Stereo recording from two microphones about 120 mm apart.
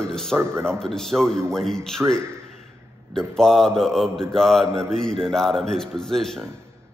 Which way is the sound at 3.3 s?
5° left (ahead or behind).